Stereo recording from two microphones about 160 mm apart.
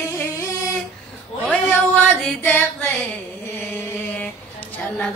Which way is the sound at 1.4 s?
10° left (ahead or behind).